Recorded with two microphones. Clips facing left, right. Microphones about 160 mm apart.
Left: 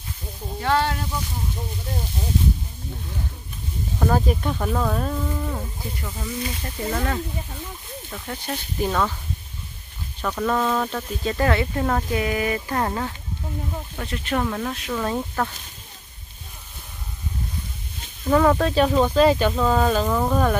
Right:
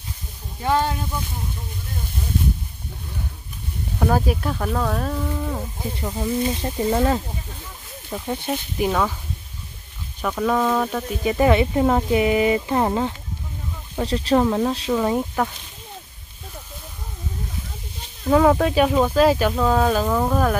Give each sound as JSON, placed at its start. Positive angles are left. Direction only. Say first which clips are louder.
{"t": 0.6, "sound": "speech", "louder": "right 1 dB", "side_deg": -15}
{"t": 4.0, "sound": "speech", "louder": "right 1 dB", "side_deg": -5}
{"t": 5.8, "sound": "speech", "louder": "right 6 dB", "side_deg": -30}
{"t": 10.2, "sound": "speech", "louder": "right 2 dB", "side_deg": -5}
{"t": 13.9, "sound": "speech", "louder": "right 8 dB", "side_deg": -30}
{"t": 15.0, "sound": "speech", "louder": "right 1 dB", "side_deg": -15}
{"t": 18.3, "sound": "speech", "louder": "right 2 dB", "side_deg": -10}